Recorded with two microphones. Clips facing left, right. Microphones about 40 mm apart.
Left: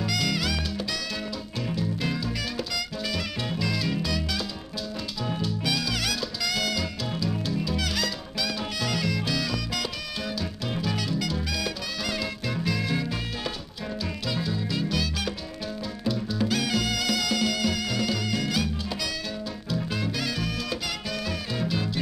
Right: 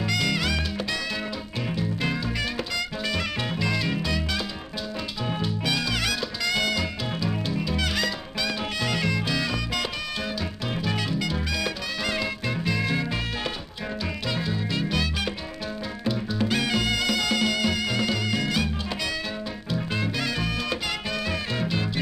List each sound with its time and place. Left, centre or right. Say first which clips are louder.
0.0 s music: right 2 dB; centre
1.8 s music: right 1 dB; right
10.9 s music: right 2 dB; right
14.3 s music: even; right
19.7 s music: right 1 dB; centre